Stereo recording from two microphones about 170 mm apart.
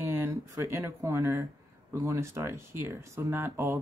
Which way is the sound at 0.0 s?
15° right (ahead or behind).